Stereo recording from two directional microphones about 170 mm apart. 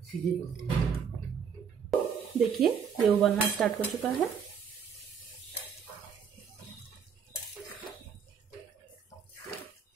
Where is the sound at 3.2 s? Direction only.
Centre (ahead or behind).